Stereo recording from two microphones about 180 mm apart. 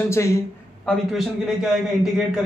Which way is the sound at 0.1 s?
15° left (ahead or behind).